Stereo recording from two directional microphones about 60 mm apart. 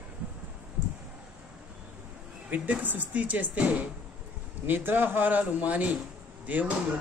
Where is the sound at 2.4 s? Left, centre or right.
Right.